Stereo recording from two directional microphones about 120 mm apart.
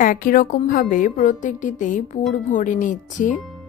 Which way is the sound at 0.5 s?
90° left.